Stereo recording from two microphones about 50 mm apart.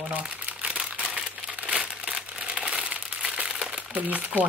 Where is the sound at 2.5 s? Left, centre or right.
Centre.